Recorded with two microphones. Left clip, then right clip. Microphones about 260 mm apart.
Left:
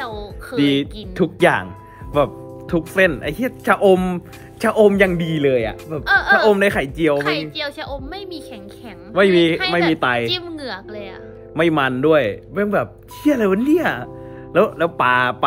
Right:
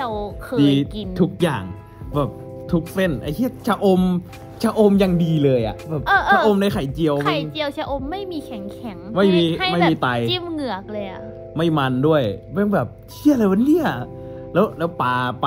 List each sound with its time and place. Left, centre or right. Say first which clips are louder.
0.0 s music: right 3 dB; right
1.1 s a woman's voice: left 6 dB; centre
6.5 s speech: left 5 dB; centre
7.2 s a woman's voice: left 1 dB; right
11.5 s speech: left 3 dB; centre